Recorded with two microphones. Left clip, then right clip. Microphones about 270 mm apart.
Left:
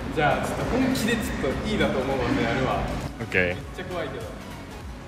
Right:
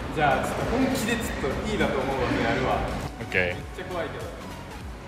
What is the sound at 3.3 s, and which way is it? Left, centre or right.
Speech, centre.